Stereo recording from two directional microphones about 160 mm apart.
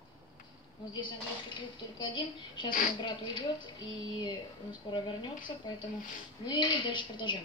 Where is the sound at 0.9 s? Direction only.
30° left (ahead or behind).